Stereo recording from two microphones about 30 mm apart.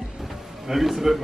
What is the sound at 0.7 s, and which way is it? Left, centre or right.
Speech, centre.